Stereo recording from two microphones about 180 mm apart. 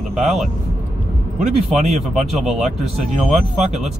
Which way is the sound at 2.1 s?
Centre (ahead or behind).